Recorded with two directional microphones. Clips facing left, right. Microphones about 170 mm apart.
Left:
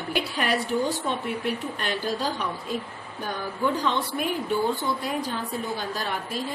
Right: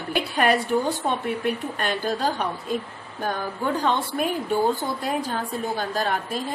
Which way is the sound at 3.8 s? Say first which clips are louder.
Right 3 dB; 50° right (ahead or behind).